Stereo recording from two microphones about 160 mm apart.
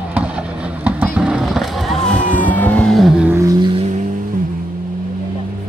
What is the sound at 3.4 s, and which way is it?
Vehicle, 30° right (ahead or behind).